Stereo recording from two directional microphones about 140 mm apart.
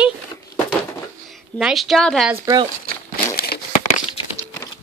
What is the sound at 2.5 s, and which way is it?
Speech, 25° right (ahead or behind).